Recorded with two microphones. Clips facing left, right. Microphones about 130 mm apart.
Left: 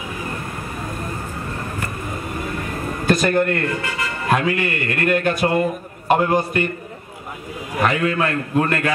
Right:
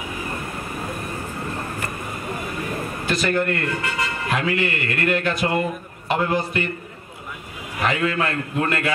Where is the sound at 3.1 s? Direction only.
45° left (ahead or behind).